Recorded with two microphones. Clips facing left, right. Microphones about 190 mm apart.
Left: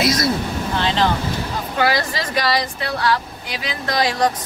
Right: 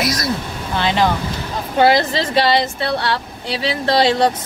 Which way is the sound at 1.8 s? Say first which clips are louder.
Right 6 dB; 25° right (ahead or behind).